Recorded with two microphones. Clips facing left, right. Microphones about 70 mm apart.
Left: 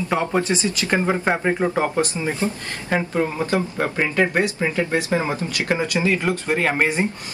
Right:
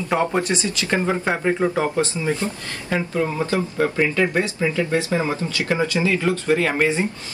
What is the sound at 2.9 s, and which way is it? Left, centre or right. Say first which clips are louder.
Speech: left 1 dB; left.